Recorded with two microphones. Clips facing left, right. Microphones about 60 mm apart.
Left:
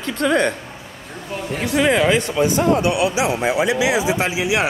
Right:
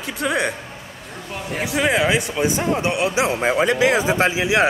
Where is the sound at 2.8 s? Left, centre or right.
Right.